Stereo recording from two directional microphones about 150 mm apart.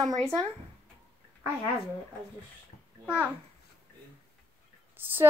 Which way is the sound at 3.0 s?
15° left (ahead or behind).